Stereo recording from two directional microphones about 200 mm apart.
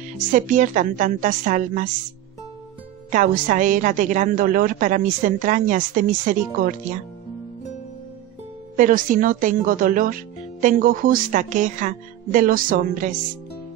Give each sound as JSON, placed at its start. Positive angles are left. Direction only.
{"t": 0.3, "sound": "a woman's voice", "side_deg": -40}
{"t": 3.1, "sound": "a woman's voice", "side_deg": -40}
{"t": 8.7, "sound": "speech", "side_deg": -45}